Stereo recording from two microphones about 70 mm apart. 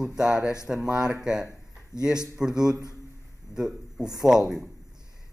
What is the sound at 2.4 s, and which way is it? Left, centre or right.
Speech, centre.